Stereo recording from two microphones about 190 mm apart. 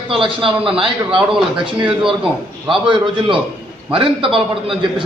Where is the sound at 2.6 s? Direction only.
25° right (ahead or behind).